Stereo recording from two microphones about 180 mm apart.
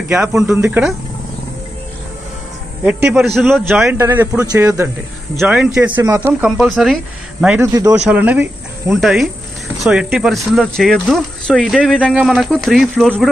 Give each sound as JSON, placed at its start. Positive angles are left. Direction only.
{"t": 0.4, "sound": "speech", "side_deg": -5}
{"t": 2.8, "sound": "speech", "side_deg": -5}
{"t": 3.6, "sound": "speech", "side_deg": -15}
{"t": 5.4, "sound": "speech", "side_deg": -5}